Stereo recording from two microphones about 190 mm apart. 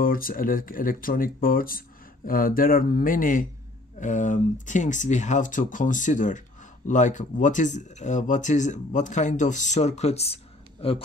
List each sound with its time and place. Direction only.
0.0 s speech: 50° left (ahead or behind); by 11.1 s 30° left (ahead or behind)